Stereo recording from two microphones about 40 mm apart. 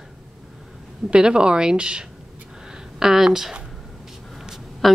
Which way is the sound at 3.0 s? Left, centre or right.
Centre.